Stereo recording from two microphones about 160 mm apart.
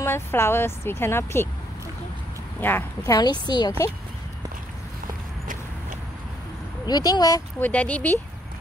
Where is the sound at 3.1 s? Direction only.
25° left (ahead or behind).